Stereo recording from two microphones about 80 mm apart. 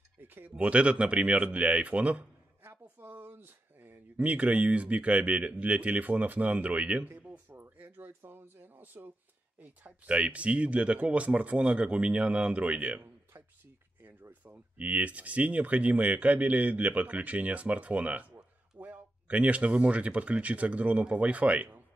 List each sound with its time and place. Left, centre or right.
0.2 s speech: right
7.1 s a sound: right
9.6 s speech: centre
14.4 s speech: centre